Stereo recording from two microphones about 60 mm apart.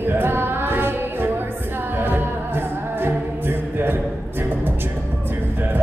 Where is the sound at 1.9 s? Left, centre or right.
Right.